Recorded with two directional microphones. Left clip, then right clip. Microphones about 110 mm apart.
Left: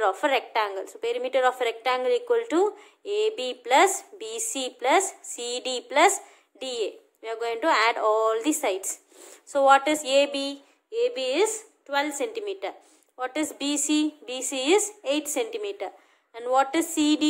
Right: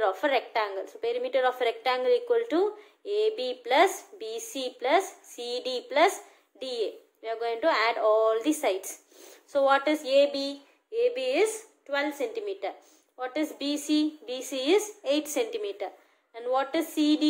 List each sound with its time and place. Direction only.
0.0 s a woman's voice: 25° left (ahead or behind)
12.4 s a woman's voice: 20° left (ahead or behind)